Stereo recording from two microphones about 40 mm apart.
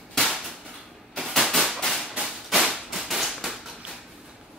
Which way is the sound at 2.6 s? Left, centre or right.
Centre.